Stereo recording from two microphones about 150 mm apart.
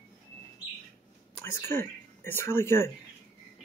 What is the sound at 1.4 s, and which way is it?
Speech, 15° left (ahead or behind).